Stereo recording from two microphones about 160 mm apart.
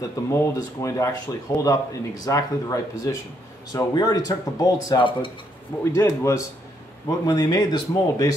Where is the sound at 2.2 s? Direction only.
20° left (ahead or behind).